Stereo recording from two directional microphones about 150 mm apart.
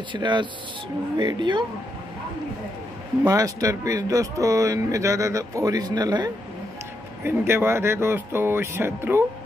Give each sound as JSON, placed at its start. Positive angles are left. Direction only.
{"t": 0.1, "sound": "speech", "side_deg": -30}
{"t": 3.3, "sound": "speech", "side_deg": -20}